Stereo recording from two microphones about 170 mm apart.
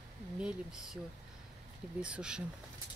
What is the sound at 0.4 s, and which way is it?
Speech, 5° right (ahead or behind).